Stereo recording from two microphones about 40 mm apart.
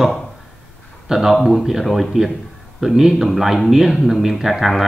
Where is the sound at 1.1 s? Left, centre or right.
Centre.